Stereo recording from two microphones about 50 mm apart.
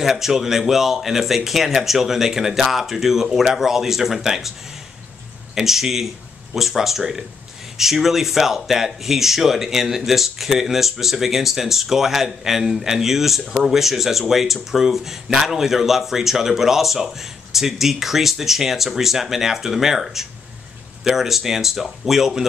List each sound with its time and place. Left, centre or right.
0.0 s speech: centre
5.5 s speech: centre